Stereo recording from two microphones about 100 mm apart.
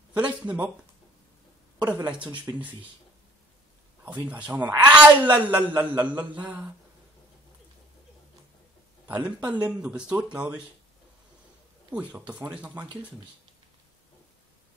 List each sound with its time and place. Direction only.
0.1 s a woman's voice: 15° right (ahead or behind)
2.0 s a woman's voice: 15° right (ahead or behind)
4.0 s a woman's voice: 15° right (ahead or behind)
9.2 s a woman's voice: 15° right (ahead or behind)
11.9 s a woman's voice: 10° right (ahead or behind)